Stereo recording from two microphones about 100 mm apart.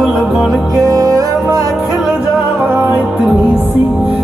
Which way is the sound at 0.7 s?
35° right (ahead or behind).